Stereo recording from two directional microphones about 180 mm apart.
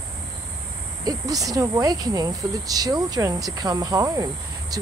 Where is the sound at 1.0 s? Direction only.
20° right (ahead or behind).